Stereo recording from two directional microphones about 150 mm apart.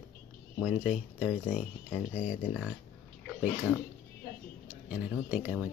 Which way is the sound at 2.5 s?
10° right (ahead or behind).